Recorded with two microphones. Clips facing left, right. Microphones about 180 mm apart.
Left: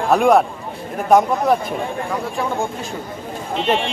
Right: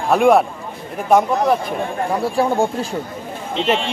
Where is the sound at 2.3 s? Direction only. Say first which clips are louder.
Right 5 dB; 35° right (ahead or behind).